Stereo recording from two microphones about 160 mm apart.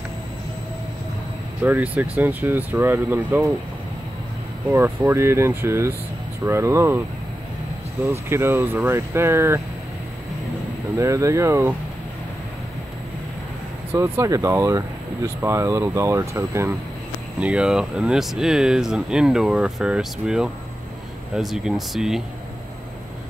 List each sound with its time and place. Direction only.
1.6 s speech: 10° right (ahead or behind)
4.6 s speech: 15° right (ahead or behind)
8.1 s speech: 15° right (ahead or behind)
11.0 s speech: 20° right (ahead or behind)
13.9 s speech: 20° right (ahead or behind); by 22.2 s centre (ahead or behind)